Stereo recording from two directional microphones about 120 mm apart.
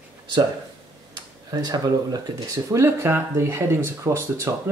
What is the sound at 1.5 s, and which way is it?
Speech, 35° right (ahead or behind).